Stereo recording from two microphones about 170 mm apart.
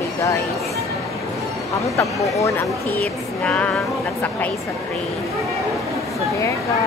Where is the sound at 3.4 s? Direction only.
5° left (ahead or behind).